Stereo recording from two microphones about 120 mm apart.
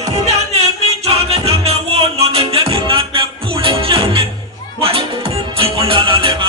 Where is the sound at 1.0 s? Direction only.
55° right (ahead or behind).